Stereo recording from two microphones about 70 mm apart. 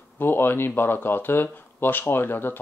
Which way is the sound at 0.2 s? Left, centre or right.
Left.